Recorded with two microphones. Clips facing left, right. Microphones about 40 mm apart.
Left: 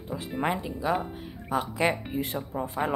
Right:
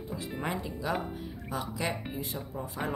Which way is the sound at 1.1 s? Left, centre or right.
Left.